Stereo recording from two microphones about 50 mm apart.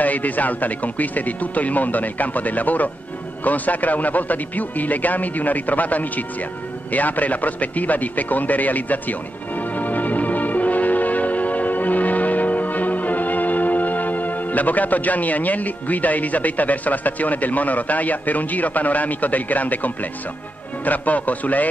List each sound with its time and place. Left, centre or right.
0.0 s speech: left
9.6 s music: left
20.8 s speech: left